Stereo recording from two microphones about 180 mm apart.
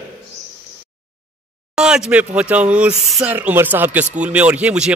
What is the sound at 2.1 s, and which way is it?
Speech, 10° right (ahead or behind).